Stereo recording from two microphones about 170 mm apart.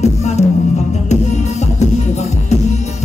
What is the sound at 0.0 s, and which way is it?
Music, 40° left (ahead or behind).